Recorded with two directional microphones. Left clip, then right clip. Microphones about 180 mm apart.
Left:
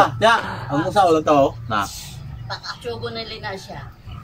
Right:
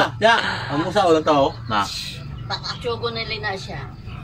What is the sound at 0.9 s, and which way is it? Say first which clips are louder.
Speech: left 1 dB; 20° left (ahead or behind).